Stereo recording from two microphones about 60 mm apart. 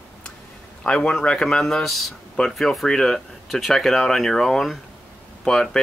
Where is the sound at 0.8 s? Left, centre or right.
Centre.